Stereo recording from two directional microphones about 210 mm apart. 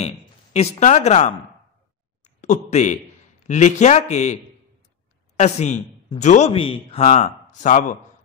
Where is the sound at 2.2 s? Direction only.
35° left (ahead or behind).